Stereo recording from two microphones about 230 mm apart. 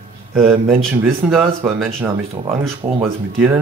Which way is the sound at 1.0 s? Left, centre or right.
Centre.